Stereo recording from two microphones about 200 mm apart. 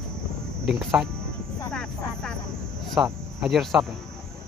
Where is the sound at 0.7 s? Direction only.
Centre (ahead or behind).